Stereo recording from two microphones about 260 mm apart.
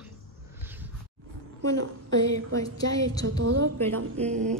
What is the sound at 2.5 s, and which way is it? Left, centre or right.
A woman's voice, centre.